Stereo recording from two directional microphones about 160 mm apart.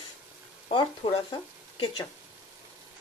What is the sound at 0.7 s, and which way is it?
Speech, 30° left (ahead or behind).